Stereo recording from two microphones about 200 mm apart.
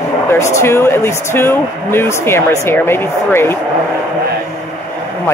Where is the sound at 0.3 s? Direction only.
15° left (ahead or behind).